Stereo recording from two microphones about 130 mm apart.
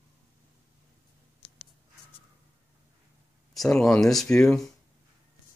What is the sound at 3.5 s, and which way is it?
Speech, 5° left (ahead or behind).